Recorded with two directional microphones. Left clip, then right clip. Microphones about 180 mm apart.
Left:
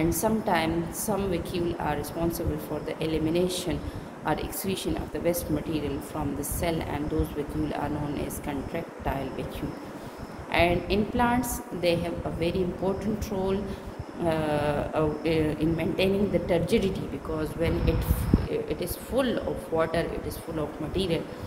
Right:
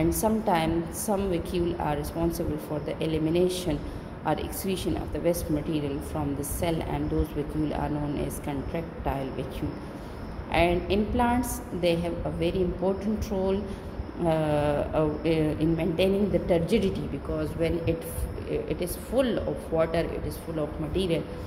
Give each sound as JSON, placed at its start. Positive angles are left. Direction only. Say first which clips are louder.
{"t": 0.0, "sound": "speech", "louder": "right 1 dB", "side_deg": -20}
{"t": 10.5, "sound": "speech", "louder": "even", "side_deg": -20}